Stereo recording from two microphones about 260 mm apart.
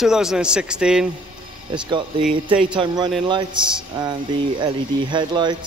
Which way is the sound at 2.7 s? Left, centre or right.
Centre.